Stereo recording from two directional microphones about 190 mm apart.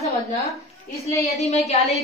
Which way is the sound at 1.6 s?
35° left (ahead or behind).